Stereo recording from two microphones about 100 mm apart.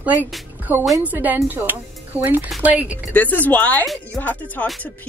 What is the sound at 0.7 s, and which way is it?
A woman's voice, 20° right (ahead or behind).